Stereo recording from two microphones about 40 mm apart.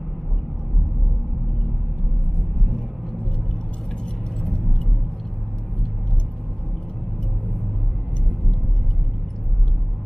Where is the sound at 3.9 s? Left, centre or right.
Centre.